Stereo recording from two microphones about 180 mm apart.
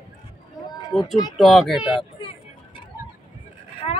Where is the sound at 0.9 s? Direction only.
Centre (ahead or behind).